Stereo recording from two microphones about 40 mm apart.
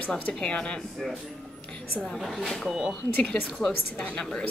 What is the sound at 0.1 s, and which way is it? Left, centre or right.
Speech, left.